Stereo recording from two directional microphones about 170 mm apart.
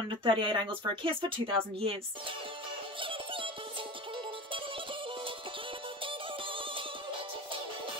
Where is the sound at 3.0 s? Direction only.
30° right (ahead or behind).